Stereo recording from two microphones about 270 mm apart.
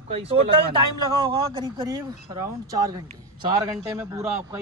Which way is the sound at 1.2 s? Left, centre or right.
Centre.